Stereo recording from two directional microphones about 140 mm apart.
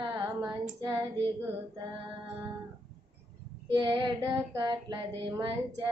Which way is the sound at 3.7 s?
35° right (ahead or behind).